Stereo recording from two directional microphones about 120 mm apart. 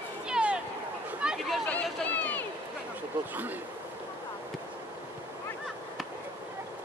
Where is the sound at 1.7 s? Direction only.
15° left (ahead or behind).